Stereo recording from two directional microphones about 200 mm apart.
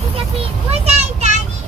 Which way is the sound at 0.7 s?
30° right (ahead or behind).